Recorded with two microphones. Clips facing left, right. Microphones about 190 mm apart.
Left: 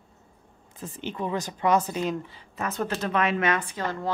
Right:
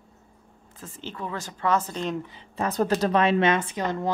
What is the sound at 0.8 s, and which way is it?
Speech, 15° left (ahead or behind).